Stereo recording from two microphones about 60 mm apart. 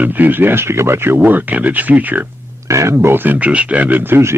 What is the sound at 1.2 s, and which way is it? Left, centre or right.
Speech, right.